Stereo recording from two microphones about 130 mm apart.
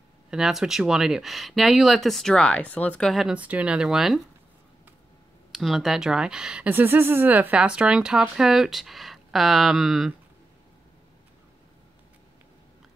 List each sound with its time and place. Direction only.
0.3 s speech: 5° right (ahead or behind)
5.5 s speech: centre (ahead or behind)